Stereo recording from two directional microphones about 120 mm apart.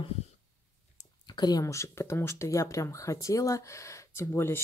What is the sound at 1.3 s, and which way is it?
Speech, 35° left (ahead or behind).